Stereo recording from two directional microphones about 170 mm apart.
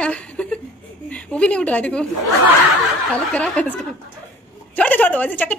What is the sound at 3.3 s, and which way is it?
Speech, 10° left (ahead or behind).